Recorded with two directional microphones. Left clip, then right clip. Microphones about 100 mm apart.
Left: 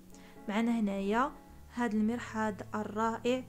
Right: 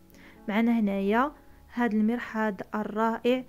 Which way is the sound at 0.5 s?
40° right (ahead or behind).